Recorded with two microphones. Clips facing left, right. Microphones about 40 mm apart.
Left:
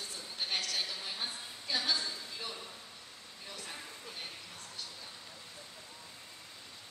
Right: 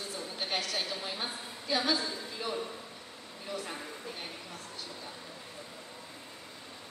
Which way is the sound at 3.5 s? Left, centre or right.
Centre.